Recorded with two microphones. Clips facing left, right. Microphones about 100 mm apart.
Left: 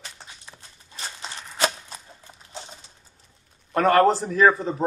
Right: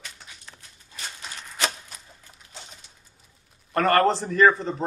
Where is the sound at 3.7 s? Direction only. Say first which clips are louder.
Left 2 dB; centre (ahead or behind).